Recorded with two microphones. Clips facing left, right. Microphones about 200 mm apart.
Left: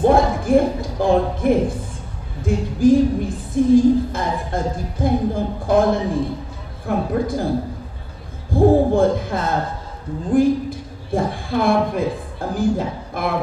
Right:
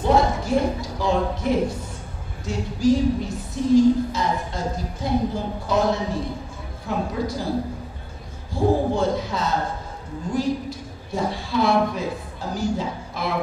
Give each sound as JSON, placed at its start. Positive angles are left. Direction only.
{"t": 0.0, "sound": "a woman's voice", "side_deg": 55}
{"t": 8.5, "sound": "a woman's voice", "side_deg": 55}